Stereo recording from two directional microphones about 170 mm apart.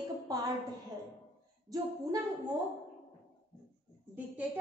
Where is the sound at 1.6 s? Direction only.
20° right (ahead or behind).